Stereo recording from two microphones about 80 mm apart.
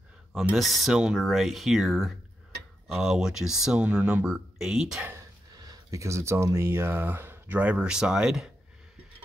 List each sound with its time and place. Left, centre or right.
0.6 s speech: centre
5.5 s speech: right; by 8.5 s centre